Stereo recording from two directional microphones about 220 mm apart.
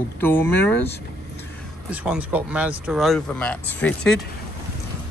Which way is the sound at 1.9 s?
5° right (ahead or behind).